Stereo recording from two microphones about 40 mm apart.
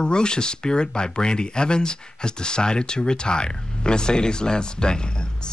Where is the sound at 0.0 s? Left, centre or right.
Left.